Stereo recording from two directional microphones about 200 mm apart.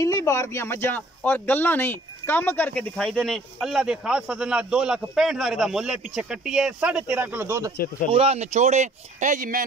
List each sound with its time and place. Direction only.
0.0 s speech: 15° left (ahead or behind); by 7.7 s 15° right (ahead or behind)
7.7 s speech: 45° left (ahead or behind)
8.1 s speech: 30° right (ahead or behind)